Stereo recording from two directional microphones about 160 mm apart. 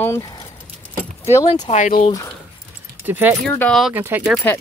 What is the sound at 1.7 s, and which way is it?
Speech, 50° left (ahead or behind).